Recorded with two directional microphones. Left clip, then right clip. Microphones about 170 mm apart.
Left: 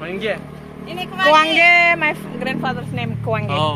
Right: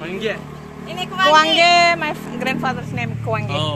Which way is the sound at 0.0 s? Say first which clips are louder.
Left 1 dB; 45° left (ahead or behind).